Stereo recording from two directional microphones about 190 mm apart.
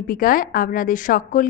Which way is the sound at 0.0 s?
50° left (ahead or behind).